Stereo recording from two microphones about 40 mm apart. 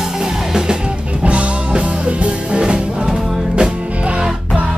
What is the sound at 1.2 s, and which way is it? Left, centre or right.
Music, right.